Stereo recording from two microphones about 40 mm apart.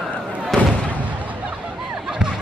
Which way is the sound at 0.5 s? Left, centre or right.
Centre.